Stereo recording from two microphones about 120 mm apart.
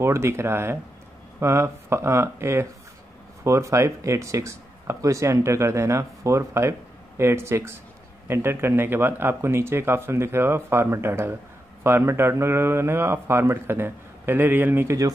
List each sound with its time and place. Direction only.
0.0 s speech: 25° right (ahead or behind)